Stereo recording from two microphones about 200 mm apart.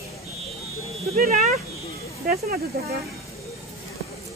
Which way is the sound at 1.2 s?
40° right (ahead or behind).